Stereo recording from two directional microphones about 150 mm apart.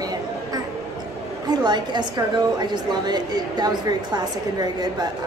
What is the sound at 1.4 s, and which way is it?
A woman's voice, 30° right (ahead or behind).